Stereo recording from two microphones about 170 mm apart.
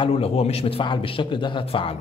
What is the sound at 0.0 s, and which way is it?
A man's voice, 35° left (ahead or behind).